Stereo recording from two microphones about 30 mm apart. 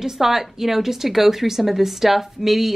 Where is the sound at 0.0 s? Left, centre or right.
Centre.